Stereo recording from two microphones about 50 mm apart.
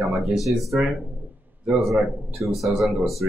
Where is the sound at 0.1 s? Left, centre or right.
Centre.